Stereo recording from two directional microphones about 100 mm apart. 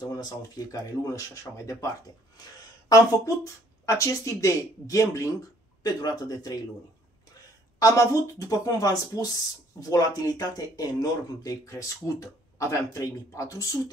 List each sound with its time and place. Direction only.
0.0 s speech: 35° left (ahead or behind)
7.8 s speech: 30° left (ahead or behind)